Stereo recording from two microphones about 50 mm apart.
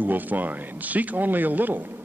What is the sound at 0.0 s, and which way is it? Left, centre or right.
A man's voice, right.